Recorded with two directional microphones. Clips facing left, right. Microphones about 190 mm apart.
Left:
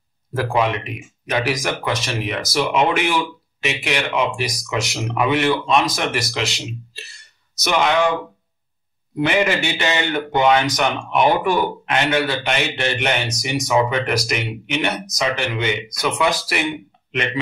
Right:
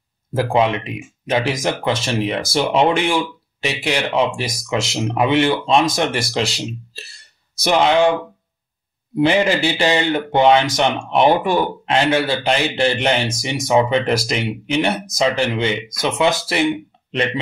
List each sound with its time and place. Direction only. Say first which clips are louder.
0.3 s a man's voice: right 3 dB; 25° right (ahead or behind)
9.1 s a man's voice: right 3 dB; 30° right (ahead or behind)